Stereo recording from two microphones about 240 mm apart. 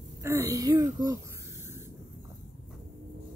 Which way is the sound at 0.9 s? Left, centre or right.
Centre.